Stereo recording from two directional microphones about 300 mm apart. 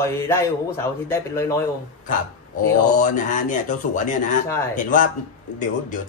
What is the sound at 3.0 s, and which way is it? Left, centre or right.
A man's voice, left.